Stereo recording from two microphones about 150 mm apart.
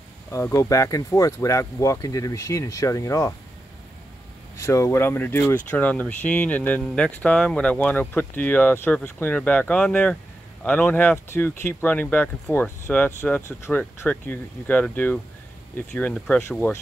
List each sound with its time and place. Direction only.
0.3 s speech: 20° left (ahead or behind)
4.6 s speech: 20° left (ahead or behind)